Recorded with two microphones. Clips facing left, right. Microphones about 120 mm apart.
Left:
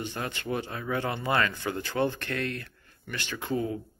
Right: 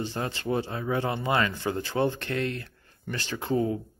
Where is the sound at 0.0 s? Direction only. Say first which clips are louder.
Right 3 dB; 30° right (ahead or behind).